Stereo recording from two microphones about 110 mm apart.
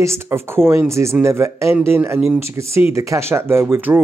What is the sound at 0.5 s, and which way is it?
Speech, 20° right (ahead or behind).